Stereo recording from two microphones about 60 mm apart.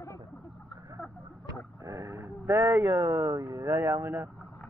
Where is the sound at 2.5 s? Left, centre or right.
Right.